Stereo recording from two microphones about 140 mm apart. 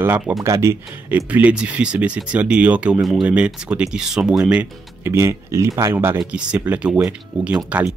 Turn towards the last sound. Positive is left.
turn(degrees=-10)  # may be behind; listen again after turning